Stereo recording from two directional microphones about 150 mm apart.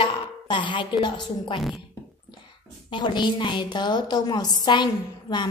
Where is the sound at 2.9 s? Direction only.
30° left (ahead or behind).